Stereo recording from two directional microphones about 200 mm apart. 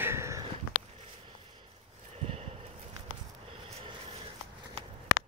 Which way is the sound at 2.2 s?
30° right (ahead or behind).